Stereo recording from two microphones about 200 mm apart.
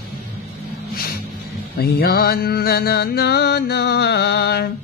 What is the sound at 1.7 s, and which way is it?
Speech, 50° left (ahead or behind).